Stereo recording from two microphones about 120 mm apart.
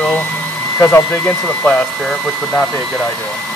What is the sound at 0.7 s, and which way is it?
Speech, 20° left (ahead or behind).